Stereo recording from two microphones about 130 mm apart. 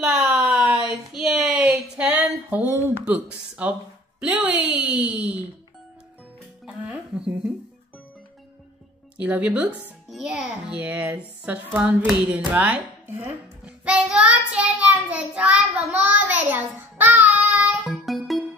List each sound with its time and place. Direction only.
0.0 s a sound: 5° right (ahead or behind)
4.2 s a child's voice: 10° right (ahead or behind)
6.6 s music: 10° right (ahead or behind)
9.2 s a child's voice: 10° right (ahead or behind)
17.8 s music: centre (ahead or behind)